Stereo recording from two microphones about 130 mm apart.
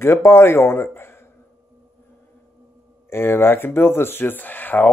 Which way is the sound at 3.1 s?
15° left (ahead or behind).